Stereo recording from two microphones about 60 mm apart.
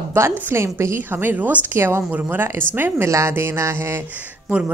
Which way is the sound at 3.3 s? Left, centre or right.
Right.